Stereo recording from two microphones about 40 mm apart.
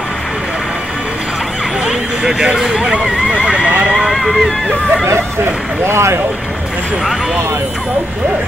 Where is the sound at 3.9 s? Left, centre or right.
Centre.